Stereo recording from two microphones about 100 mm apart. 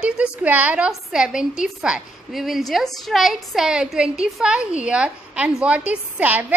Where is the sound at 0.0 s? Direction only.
10° right (ahead or behind).